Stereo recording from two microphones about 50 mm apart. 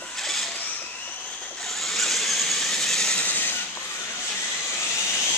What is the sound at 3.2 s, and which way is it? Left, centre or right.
Vehicle, left.